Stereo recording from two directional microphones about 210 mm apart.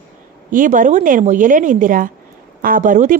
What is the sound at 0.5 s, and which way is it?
A woman's voice, 40° right (ahead or behind).